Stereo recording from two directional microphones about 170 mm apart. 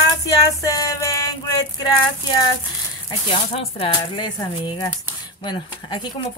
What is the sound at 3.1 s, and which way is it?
Speech, 35° left (ahead or behind).